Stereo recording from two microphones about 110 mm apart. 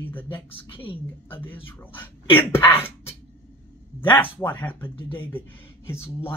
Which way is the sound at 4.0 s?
20° left (ahead or behind).